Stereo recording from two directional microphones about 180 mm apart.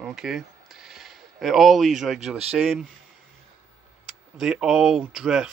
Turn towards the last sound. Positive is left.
turn(degrees=-5)  # may be behind; listen again after turning